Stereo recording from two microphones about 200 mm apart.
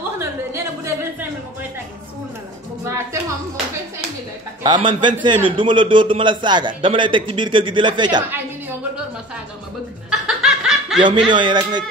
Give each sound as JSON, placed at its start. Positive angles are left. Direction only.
{"t": 0.2, "sound": "a sound", "side_deg": -15}
{"t": 2.8, "sound": "music", "side_deg": -15}
{"t": 4.6, "sound": "a man's voice", "side_deg": -25}
{"t": 8.2, "sound": "a woman's voice", "side_deg": -10}
{"t": 10.0, "sound": "snicker", "side_deg": -5}
{"t": 11.0, "sound": "a man's voice", "side_deg": -25}